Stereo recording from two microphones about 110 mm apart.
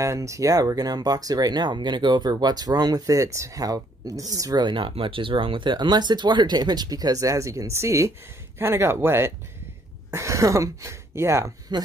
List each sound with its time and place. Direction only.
0.0 s speech: 30° right (ahead or behind)